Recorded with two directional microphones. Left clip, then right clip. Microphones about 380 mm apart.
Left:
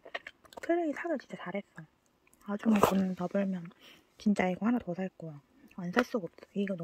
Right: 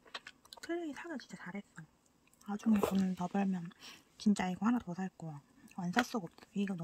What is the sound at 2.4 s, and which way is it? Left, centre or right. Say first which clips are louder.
Speech: left 7 dB; centre.